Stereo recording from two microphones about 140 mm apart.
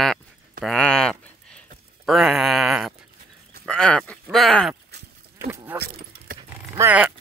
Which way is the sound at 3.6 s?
5° left (ahead or behind).